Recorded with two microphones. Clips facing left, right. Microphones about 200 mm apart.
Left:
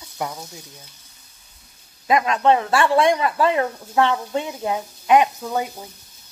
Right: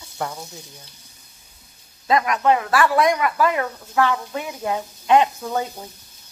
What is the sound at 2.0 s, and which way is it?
Speech, 25° left (ahead or behind).